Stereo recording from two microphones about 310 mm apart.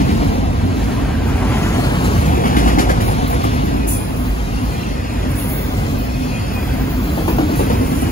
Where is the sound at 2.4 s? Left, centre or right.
Left.